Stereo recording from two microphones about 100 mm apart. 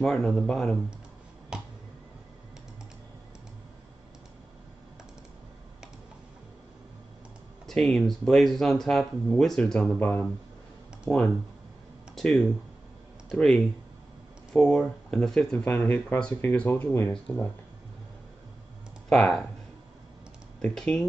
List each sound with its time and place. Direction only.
0.0 s speech: 5° left (ahead or behind)
7.6 s speech: 5° left (ahead or behind)
12.2 s speech: centre (ahead or behind)
15.6 s speech: 20° left (ahead or behind)
19.0 s speech: 5° left (ahead or behind)
20.6 s speech: 5° left (ahead or behind)